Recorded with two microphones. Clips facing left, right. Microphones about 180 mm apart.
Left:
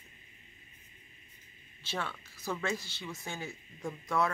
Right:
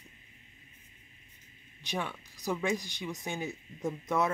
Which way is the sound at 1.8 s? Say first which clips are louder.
Right 2 dB; 15° right (ahead or behind).